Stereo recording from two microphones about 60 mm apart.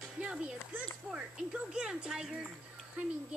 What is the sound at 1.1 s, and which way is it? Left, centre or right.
Speech, centre.